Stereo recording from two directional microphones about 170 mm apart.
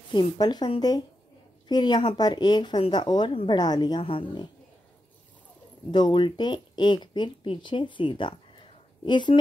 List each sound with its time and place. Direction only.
0.1 s speech: 25° left (ahead or behind)
5.9 s speech: 25° left (ahead or behind)